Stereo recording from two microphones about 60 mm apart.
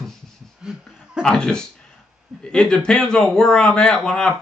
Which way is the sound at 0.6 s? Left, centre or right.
Centre.